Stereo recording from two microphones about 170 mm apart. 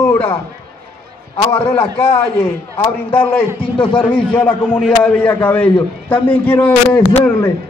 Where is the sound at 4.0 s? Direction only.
10° left (ahead or behind).